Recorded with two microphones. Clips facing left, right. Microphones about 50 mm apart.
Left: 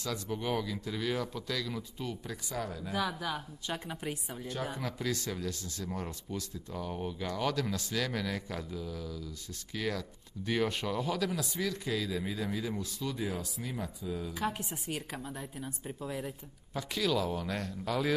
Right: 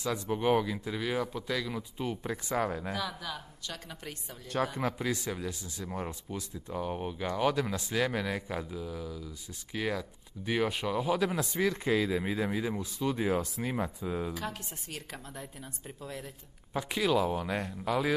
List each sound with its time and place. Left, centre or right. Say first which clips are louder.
0.0 s speech: right 5 dB; right
2.9 s a woman's voice: left 2 dB; centre
4.6 s speech: right 7 dB; right
4.9 s speech: right 2 dB; centre
11.1 s speech: right 4 dB; right
14.3 s a woman's voice: left 3 dB; centre
16.7 s speech: right 3 dB; right